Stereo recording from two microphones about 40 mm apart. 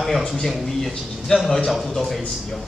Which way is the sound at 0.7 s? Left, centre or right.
Centre.